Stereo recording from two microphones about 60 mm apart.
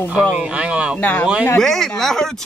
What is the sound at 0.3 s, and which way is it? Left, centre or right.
Speech, right.